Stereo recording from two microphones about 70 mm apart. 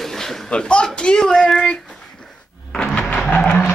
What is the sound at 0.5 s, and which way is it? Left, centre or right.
Speech, centre.